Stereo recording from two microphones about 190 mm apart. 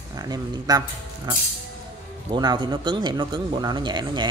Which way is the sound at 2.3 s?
25° right (ahead or behind).